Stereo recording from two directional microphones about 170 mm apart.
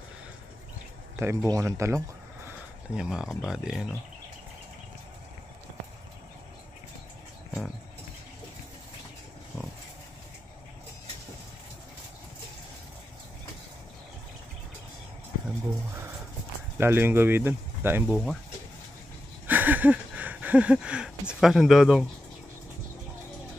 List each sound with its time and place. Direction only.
1.1 s speech: 15° right (ahead or behind)
3.0 s speech: 5° right (ahead or behind)
16.7 s speech: 10° right (ahead or behind)
19.4 s a sound: 10° right (ahead or behind)